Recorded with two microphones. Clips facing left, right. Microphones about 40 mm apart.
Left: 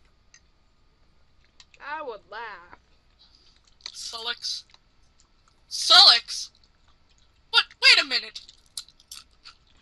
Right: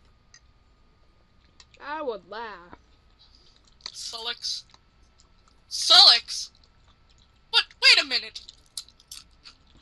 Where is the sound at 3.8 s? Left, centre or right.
Centre.